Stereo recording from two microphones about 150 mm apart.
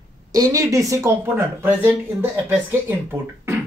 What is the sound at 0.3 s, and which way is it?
Speech, 25° right (ahead or behind).